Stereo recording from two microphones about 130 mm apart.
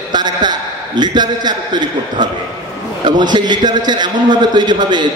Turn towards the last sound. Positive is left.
turn(degrees=-35)  # may be behind; listen again after turning